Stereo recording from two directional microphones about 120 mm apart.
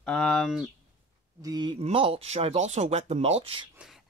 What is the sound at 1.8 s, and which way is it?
Speech, 50° right (ahead or behind).